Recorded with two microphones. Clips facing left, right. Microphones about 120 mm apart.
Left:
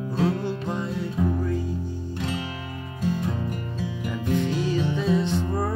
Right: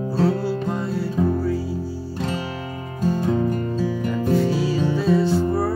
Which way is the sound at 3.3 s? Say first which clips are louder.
Right 9 dB; 30° right (ahead or behind).